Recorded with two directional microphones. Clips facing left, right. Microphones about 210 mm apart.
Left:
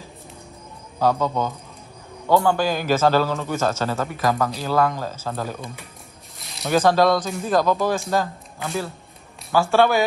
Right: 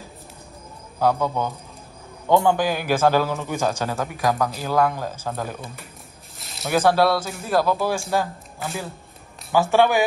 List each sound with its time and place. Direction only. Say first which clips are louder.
0.9 s a man's voice: left 1 dB; 10° right (ahead or behind)
6.3 s zipper: left 2 dB; centre (ahead or behind)
6.9 s a man's voice: left 1 dB; 10° right (ahead or behind)
9.5 s a man's voice: even; 15° right (ahead or behind)